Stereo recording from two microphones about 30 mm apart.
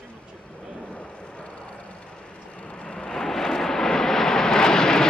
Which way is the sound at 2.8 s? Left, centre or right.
Left.